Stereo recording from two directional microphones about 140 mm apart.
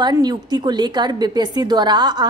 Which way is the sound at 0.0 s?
30° right (ahead or behind).